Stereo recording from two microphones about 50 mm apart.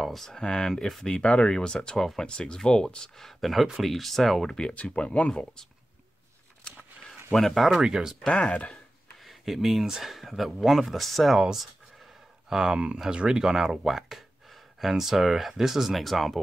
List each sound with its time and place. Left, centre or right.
0.0 s speech: centre
0.4 s speech: centre
1.0 s speech: centre
3.3 s speech: centre
4.5 s speech: centre
5.3 s speech: centre
7.3 s speech: centre
7.8 s speech: centre
8.3 s speech: left
9.2 s speech: centre
12.4 s speech: centre
13.4 s speech: centre